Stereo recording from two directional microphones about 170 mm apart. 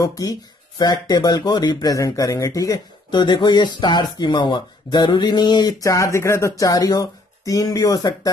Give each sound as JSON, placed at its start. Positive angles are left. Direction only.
{"t": 0.0, "sound": "speech", "side_deg": 20}